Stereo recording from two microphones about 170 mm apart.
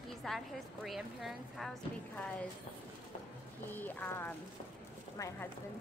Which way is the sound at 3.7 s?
10° left (ahead or behind).